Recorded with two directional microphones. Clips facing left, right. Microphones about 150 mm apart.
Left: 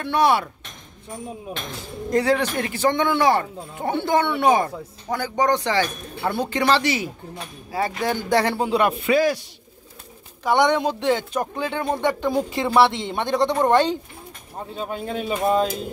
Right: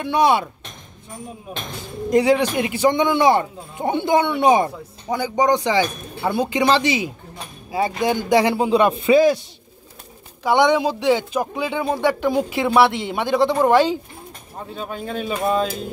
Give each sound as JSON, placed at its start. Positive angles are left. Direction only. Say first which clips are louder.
{"t": 0.0, "sound": "speech", "louder": "right 2 dB", "side_deg": -15}
{"t": 2.0, "sound": "speech", "louder": "right 4 dB", "side_deg": -15}
{"t": 10.4, "sound": "speech", "louder": "right 2 dB", "side_deg": -10}
{"t": 14.8, "sound": "speech", "louder": "left 1 dB", "side_deg": 20}